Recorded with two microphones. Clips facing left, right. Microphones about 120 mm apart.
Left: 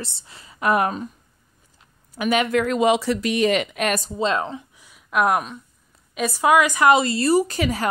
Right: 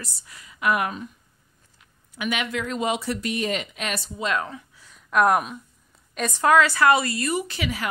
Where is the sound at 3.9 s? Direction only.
45° left (ahead or behind).